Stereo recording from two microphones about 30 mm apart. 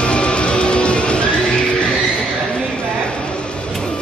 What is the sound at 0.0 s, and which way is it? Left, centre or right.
Music, left.